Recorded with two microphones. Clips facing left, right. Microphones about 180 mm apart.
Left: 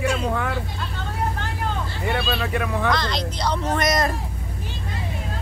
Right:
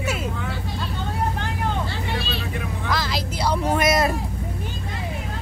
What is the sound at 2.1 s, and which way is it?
Vehicle, 75° left (ahead or behind).